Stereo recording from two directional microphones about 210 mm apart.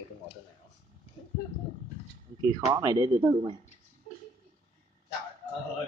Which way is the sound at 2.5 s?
15° right (ahead or behind).